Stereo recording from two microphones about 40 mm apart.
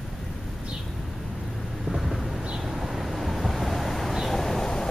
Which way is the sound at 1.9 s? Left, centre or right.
Centre.